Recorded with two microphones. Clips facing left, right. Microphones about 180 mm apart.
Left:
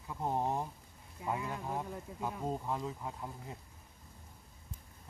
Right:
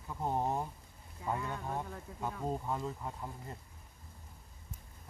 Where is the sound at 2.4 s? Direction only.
Centre (ahead or behind).